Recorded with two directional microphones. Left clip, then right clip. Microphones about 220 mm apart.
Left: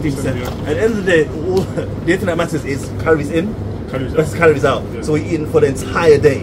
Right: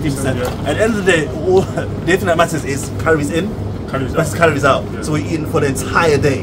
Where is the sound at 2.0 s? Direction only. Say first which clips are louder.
Right 3 dB; 20° right (ahead or behind).